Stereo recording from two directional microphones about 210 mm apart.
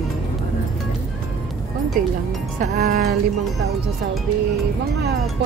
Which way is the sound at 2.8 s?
45° right (ahead or behind).